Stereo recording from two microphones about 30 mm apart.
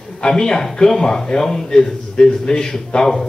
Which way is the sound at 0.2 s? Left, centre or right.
Left.